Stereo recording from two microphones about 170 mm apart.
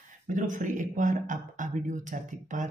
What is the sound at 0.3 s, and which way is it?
Speech, 50° right (ahead or behind).